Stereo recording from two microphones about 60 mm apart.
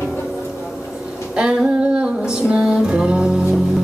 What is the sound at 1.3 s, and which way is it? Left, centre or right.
Music, centre.